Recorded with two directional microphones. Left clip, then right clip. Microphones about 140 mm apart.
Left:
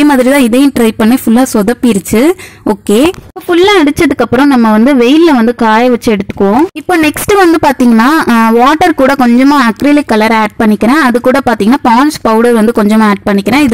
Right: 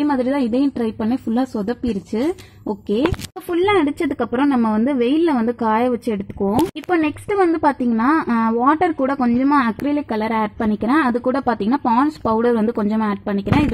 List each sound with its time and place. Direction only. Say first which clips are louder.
0.0 s a woman's voice: left 13 dB; 30° left (ahead or behind)
3.4 s a woman's voice: left 11 dB; 50° left (ahead or behind)